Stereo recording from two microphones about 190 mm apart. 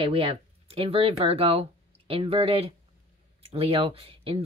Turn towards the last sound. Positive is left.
turn(degrees=-30)  # may be behind; listen again after turning